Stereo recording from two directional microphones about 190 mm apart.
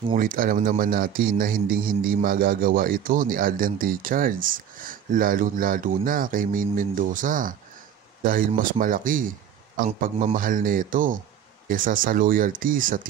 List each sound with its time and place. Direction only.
0.1 s a man's voice: 45° right (ahead or behind)